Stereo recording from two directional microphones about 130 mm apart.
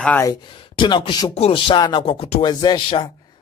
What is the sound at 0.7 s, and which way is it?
Speech, 40° left (ahead or behind).